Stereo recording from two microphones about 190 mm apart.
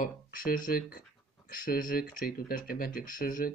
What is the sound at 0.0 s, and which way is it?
Speech, 45° left (ahead or behind).